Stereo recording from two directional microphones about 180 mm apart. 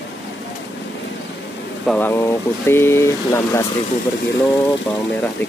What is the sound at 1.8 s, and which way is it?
Speech, 10° left (ahead or behind).